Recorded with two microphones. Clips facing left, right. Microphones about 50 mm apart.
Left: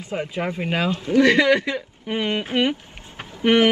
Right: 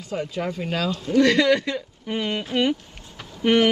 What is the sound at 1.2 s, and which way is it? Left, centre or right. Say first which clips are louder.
Speech: left 2 dB; centre.